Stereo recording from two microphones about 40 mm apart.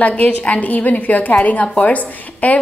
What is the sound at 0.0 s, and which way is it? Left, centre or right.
A woman's voice, left.